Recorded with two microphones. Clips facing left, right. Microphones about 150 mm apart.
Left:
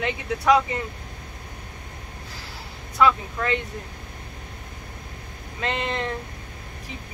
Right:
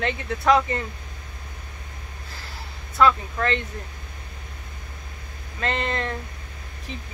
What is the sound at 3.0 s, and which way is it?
Speech, 15° left (ahead or behind).